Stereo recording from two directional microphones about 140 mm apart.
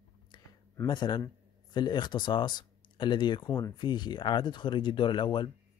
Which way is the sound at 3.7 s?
30° left (ahead or behind).